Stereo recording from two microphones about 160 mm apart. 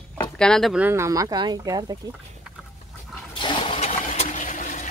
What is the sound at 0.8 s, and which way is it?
Speech, 15° right (ahead or behind).